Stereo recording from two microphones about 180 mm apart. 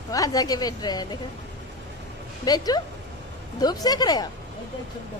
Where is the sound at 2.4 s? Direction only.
20° left (ahead or behind).